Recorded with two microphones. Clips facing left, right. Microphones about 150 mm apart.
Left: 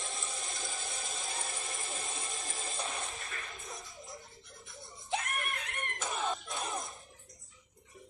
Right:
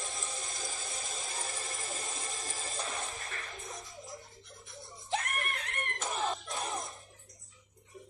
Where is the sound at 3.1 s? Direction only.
40° right (ahead or behind).